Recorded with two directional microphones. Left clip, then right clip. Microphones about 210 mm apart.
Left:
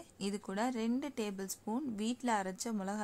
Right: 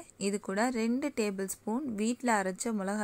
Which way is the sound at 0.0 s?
20° right (ahead or behind).